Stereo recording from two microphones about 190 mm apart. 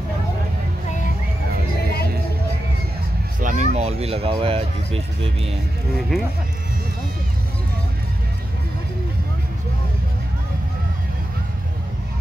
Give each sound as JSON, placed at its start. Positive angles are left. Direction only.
{"t": 3.3, "sound": "speech", "side_deg": -40}
{"t": 5.9, "sound": "speech", "side_deg": 0}